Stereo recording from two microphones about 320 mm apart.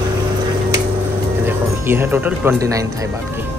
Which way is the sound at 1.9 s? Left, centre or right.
Centre.